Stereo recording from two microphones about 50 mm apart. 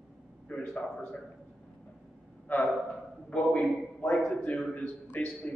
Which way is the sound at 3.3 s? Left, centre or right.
Left.